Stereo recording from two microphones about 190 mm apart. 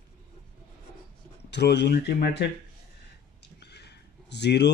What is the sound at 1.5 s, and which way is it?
Speech, 65° left (ahead or behind).